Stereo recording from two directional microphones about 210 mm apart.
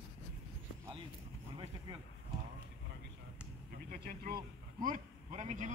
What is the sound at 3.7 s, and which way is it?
Speech, 45° right (ahead or behind).